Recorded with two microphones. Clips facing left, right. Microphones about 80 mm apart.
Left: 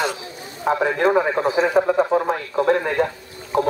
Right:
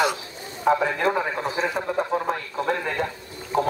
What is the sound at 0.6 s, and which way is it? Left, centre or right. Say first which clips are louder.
Speech: left 2 dB; centre.